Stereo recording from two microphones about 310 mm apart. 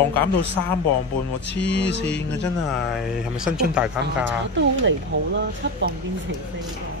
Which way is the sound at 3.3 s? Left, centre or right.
Centre.